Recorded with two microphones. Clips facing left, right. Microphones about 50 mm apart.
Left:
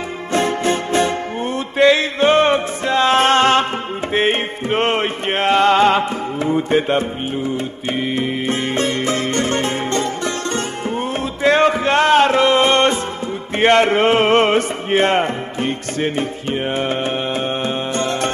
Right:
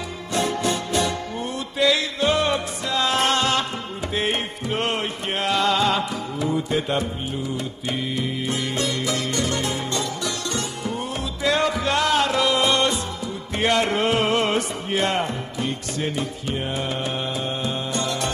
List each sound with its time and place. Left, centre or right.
0.3 s music: left